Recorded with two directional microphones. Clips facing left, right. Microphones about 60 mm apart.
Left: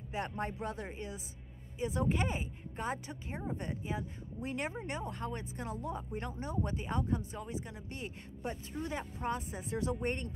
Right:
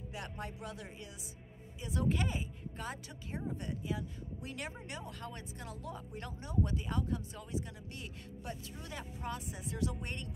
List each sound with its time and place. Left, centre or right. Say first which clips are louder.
0.1 s speech: left 8 dB; left